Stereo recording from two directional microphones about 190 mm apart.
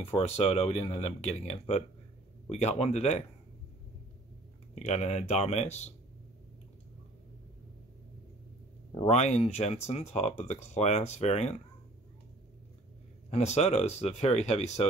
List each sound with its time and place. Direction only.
0.0 s speech: 30° left (ahead or behind)
4.7 s speech: 35° left (ahead or behind)
9.0 s speech: 35° left (ahead or behind)
13.3 s speech: 35° left (ahead or behind)